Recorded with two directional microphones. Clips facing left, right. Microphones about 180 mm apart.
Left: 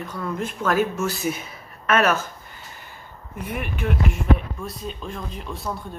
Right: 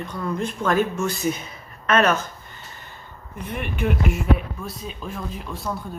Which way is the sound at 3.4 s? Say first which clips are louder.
Right 2 dB; 5° left (ahead or behind).